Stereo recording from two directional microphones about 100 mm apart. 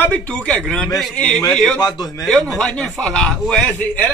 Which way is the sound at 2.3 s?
5° left (ahead or behind).